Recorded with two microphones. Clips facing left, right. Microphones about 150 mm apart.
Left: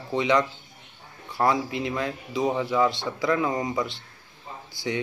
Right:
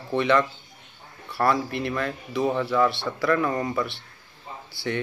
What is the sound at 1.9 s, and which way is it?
Speech, 20° left (ahead or behind).